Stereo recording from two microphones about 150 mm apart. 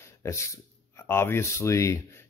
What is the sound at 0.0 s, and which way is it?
Speech, 20° left (ahead or behind).